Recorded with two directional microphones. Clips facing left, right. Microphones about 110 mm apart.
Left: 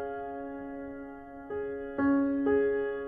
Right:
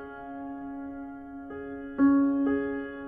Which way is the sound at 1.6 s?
30° right (ahead or behind).